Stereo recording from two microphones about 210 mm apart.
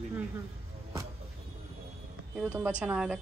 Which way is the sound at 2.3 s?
5° right (ahead or behind).